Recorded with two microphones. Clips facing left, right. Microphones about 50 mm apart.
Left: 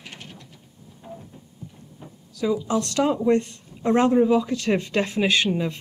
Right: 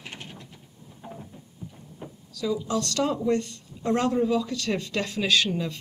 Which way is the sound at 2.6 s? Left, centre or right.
Left.